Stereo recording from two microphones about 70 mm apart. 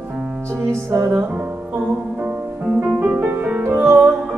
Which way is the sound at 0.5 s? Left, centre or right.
Right.